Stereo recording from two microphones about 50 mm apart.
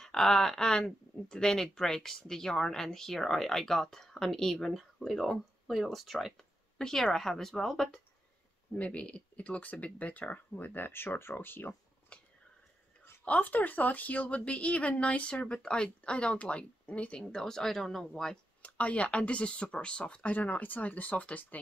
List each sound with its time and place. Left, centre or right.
0.0 s speech: centre
8.7 s speech: left
12.1 s a sound: left
13.2 s a woman's voice: left
17.2 s speech: centre
18.6 s a woman's voice: left